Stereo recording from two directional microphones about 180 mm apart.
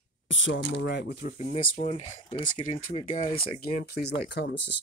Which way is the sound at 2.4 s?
50° left (ahead or behind).